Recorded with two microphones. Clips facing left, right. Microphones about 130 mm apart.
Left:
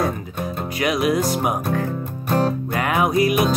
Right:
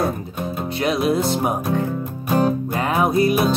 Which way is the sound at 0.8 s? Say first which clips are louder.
Even; 30° right (ahead or behind).